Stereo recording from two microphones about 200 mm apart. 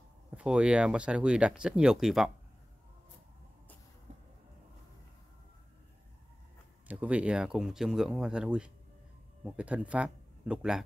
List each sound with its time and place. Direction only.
0.4 s speech: 5° right (ahead or behind)
6.9 s speech: 5° right (ahead or behind)